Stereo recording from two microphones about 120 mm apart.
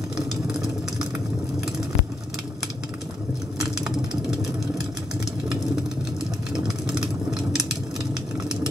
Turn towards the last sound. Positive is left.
turn(degrees=-5)  # may be behind; listen again after turning